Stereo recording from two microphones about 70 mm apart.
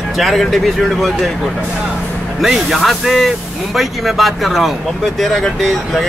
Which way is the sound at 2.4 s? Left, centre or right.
Centre.